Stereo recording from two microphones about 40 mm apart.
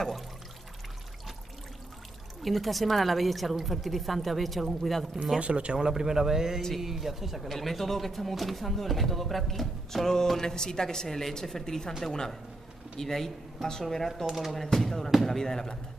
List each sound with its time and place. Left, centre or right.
2.4 s speech: centre
5.4 s speech: right
5.9 s a woman's voice: centre
14.2 s a woman's voice: centre